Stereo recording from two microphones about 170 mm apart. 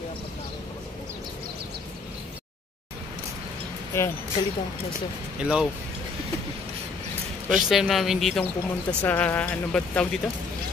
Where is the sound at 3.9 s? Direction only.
15° left (ahead or behind).